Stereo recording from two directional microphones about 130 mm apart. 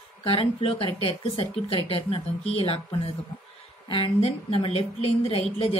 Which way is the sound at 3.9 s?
45° left (ahead or behind).